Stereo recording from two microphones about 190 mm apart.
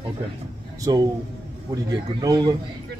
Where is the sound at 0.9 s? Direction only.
20° right (ahead or behind).